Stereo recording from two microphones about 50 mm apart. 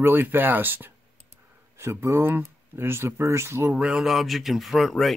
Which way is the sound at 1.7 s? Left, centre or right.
Right.